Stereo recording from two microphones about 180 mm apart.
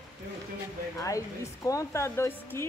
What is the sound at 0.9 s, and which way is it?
Speech, 20° left (ahead or behind).